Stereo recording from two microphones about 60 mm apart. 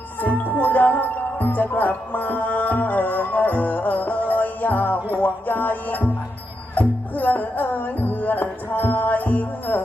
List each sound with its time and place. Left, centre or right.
0.2 s speech: left
4.3 s music: left
6.7 s speech: left